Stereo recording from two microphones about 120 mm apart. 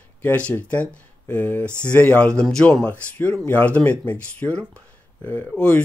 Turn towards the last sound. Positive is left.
turn(degrees=10)  # may be behind; listen again after turning